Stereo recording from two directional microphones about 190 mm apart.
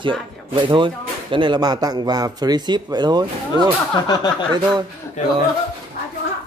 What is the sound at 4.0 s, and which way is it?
Speech, 20° left (ahead or behind).